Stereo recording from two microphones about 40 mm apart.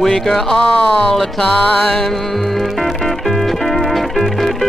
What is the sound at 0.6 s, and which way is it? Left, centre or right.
Speech, left.